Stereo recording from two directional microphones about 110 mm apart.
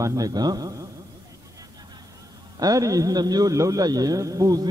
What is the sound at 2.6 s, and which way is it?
A man's voice, 30° right (ahead or behind).